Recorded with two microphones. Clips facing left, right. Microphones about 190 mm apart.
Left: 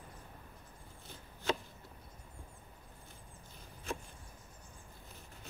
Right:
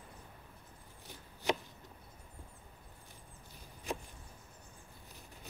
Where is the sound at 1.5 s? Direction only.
15° right (ahead or behind).